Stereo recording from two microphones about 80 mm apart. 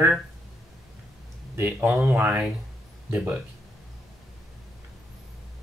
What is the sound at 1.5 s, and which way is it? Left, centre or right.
Speech, right.